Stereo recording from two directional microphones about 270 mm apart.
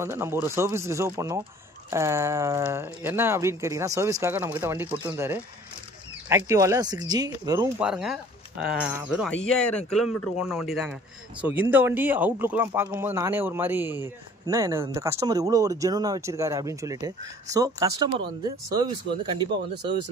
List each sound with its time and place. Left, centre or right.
0.0 s speech: centre
9.8 s speech: left
10.6 s a man's voice: centre